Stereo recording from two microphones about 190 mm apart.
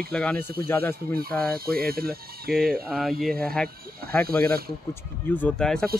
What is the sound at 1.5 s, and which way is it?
Speech, 50° right (ahead or behind).